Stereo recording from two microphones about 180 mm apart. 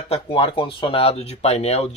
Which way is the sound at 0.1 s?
30° left (ahead or behind).